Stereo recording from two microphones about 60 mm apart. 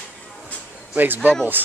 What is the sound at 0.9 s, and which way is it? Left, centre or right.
Speech, right.